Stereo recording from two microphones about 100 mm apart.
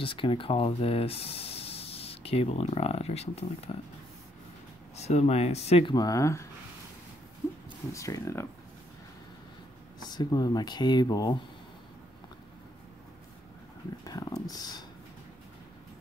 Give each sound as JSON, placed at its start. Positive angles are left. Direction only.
{"t": 0.0, "sound": "speech", "side_deg": 60}
{"t": 4.9, "sound": "speech", "side_deg": 90}
{"t": 5.9, "sound": "speech", "side_deg": 35}
{"t": 7.9, "sound": "speech", "side_deg": 30}
{"t": 9.9, "sound": "speech", "side_deg": 45}
{"t": 14.0, "sound": "a sound", "side_deg": 40}